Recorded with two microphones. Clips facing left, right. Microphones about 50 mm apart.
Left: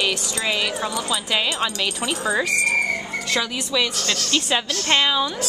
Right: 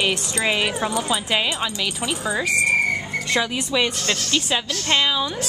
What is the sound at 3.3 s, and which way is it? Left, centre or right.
Speech, centre.